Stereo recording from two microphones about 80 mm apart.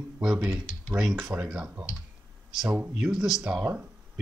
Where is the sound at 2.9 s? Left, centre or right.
Centre.